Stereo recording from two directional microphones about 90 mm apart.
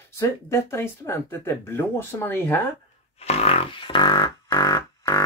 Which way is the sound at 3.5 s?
80° left.